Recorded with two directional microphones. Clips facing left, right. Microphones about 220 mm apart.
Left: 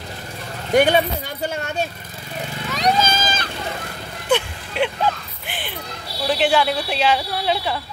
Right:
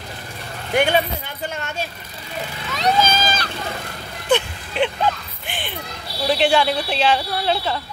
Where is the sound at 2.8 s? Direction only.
20° left (ahead or behind).